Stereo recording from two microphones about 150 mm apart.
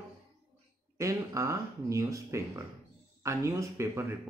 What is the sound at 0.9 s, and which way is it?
A man's voice, 20° right (ahead or behind).